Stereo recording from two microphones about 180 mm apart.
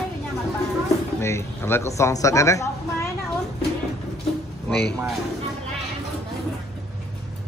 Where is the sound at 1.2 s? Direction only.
15° left (ahead or behind).